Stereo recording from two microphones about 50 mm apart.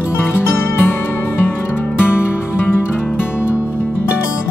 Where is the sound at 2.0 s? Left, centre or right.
Left.